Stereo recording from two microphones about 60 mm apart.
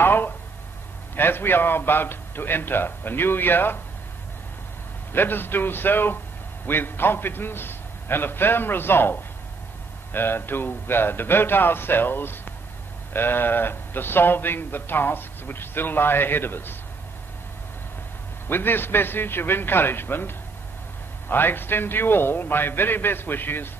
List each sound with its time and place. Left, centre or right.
0.0 s a sound: left
1.1 s speech: left
5.1 s speech: left
18.5 s speech: left